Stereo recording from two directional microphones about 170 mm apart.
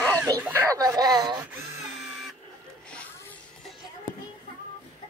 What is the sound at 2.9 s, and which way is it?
Music, 10° left (ahead or behind).